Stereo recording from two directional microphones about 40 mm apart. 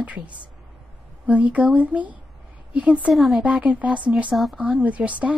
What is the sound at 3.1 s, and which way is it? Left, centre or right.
Speech, centre.